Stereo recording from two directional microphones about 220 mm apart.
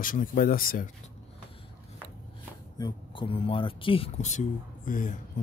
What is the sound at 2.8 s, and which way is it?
Speech, 25° left (ahead or behind).